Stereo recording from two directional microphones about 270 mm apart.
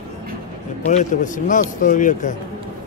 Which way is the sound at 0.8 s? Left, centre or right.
Left.